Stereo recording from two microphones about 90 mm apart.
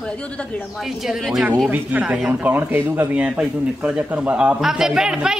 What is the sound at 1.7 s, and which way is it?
A man's voice, 15° right (ahead or behind).